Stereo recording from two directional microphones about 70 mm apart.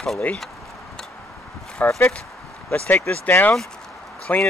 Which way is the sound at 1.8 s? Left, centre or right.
Left.